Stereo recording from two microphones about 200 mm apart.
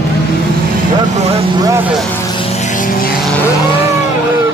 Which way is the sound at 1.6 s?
15° right (ahead or behind).